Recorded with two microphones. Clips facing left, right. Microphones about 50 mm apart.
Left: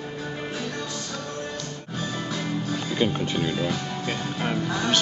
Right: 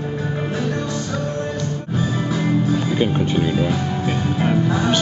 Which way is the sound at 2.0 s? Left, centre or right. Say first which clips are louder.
Right 7 dB; centre.